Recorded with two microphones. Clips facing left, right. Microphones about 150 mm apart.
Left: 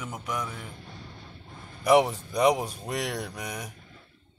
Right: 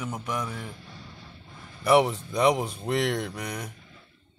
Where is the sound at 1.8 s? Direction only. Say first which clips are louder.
Even; 10° left (ahead or behind).